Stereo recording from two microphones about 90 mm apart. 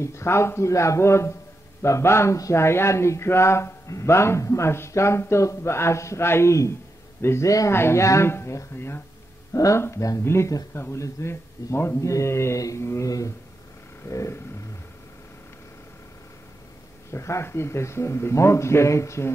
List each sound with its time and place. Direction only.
0.0 s speech: 30° left (ahead or behind)
17.1 s speech: 30° left (ahead or behind)